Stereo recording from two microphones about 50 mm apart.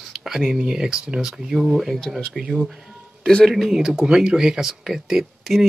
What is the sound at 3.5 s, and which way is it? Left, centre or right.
Speech, centre.